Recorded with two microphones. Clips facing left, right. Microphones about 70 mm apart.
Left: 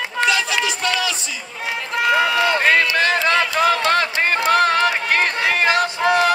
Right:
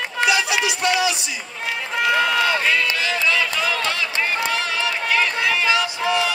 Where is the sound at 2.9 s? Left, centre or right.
Left.